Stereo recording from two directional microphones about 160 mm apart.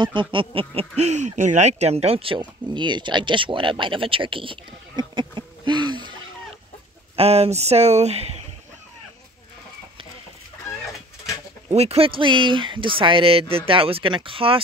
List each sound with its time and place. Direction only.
0.0 s speech: 30° right (ahead or behind)
7.2 s speech: 40° right (ahead or behind)
11.7 s speech: 40° right (ahead or behind)